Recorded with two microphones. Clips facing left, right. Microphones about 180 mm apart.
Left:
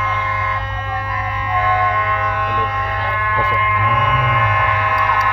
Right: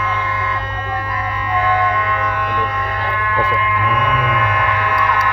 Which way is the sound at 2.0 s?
20° left (ahead or behind).